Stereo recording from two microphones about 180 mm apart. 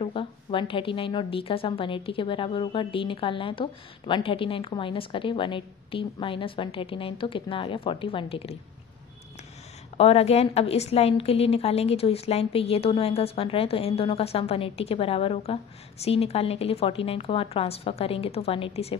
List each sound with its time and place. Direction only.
0.0 s a woman's voice: 30° left (ahead or behind)
9.9 s a woman's voice: 35° left (ahead or behind)